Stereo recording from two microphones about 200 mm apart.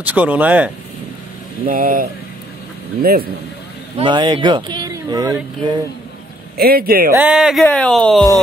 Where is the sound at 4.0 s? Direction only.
25° right (ahead or behind).